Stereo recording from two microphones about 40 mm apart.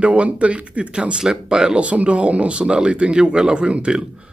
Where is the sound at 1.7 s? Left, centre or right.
Right.